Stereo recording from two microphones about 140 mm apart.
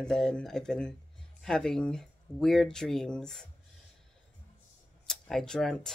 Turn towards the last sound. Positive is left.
turn(degrees=5)  # may be behind; listen again after turning